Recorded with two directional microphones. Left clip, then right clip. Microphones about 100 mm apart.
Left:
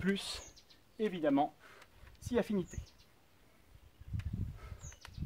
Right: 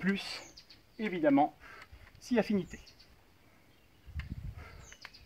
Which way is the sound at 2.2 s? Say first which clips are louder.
Right 3 dB; 45° left (ahead or behind).